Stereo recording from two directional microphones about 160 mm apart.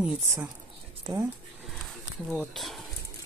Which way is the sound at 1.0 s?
25° right (ahead or behind).